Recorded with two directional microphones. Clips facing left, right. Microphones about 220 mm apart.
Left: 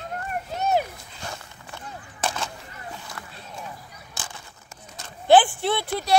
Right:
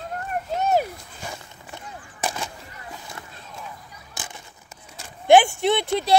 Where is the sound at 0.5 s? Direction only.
50° right (ahead or behind).